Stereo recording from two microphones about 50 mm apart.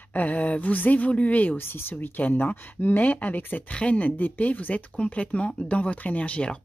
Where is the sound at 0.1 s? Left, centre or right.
Left.